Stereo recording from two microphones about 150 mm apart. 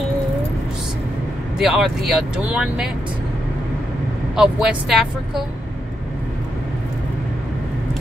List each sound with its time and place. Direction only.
1.6 s speech: centre (ahead or behind)
4.4 s speech: 5° right (ahead or behind)